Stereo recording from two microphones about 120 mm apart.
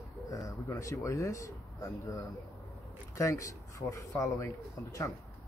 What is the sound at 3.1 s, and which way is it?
Speech, 25° left (ahead or behind).